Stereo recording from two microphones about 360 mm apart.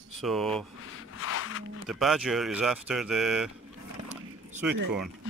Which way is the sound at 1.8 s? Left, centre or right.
Centre.